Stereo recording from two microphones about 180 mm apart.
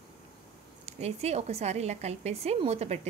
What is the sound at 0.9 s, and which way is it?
A woman's voice, 35° right (ahead or behind).